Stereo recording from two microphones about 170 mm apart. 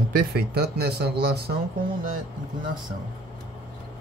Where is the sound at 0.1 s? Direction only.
65° right (ahead or behind).